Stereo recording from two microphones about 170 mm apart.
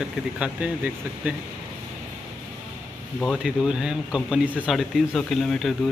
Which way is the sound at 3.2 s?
Centre (ahead or behind).